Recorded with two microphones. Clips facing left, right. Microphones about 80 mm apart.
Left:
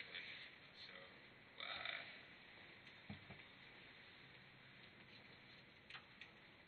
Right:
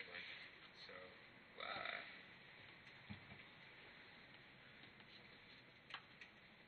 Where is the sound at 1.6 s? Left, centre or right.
Right.